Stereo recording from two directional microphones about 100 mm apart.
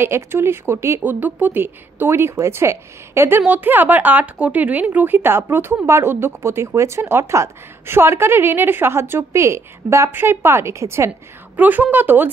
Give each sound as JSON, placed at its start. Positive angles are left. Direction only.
{"t": 0.0, "sound": "a woman's voice", "side_deg": -25}
{"t": 11.5, "sound": "a woman's voice", "side_deg": -15}